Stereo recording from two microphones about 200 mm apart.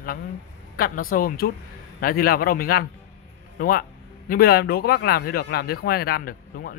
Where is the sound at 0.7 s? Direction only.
45° left (ahead or behind).